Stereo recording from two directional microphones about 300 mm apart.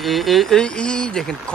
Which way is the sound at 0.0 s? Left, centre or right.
Centre.